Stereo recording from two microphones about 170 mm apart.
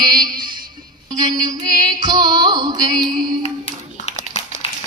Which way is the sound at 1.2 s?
20° right (ahead or behind).